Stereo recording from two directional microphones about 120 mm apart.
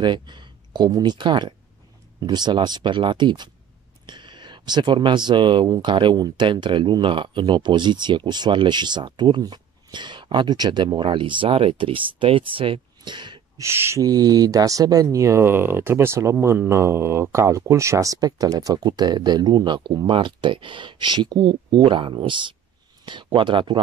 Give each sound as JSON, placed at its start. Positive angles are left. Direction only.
{"t": 0.0, "sound": "speech", "side_deg": -40}
{"t": 13.6, "sound": "speech", "side_deg": -20}
{"t": 14.0, "sound": "speech", "side_deg": -30}